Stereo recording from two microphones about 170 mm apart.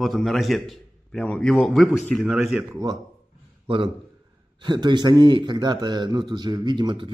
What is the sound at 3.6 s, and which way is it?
A man's voice, 35° right (ahead or behind).